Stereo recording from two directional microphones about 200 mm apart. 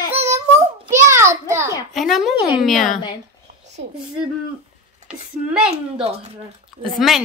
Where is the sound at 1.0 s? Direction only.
15° right (ahead or behind).